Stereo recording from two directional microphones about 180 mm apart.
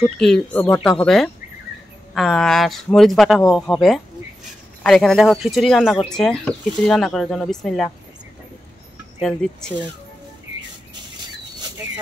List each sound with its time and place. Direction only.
0.0 s speech: 5° left (ahead or behind)
9.2 s speech: 5° left (ahead or behind)